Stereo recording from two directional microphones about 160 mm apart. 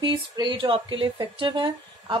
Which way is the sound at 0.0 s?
30° right (ahead or behind).